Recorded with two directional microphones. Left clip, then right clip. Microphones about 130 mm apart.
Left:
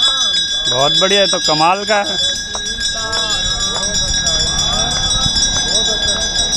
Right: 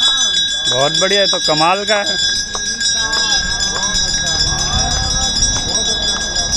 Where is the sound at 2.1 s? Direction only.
40° left (ahead or behind).